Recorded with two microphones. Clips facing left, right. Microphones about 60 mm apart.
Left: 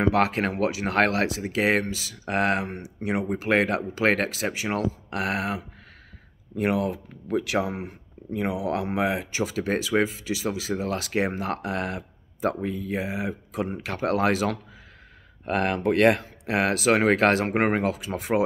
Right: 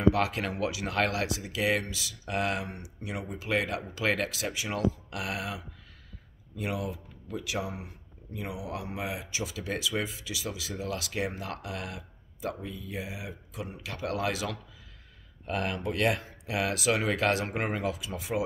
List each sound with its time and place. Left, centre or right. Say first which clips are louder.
0.0 s speech: left 4 dB; left
9.3 s speech: left 8 dB; left